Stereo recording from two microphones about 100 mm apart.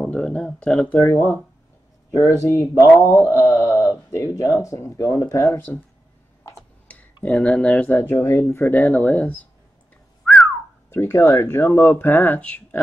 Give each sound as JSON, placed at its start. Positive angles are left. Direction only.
{"t": 0.0, "sound": "speech", "side_deg": 10}
{"t": 0.9, "sound": "speech", "side_deg": 25}
{"t": 7.2, "sound": "speech", "side_deg": 10}
{"t": 10.2, "sound": "whistling", "side_deg": 5}
{"t": 10.9, "sound": "speech", "side_deg": 25}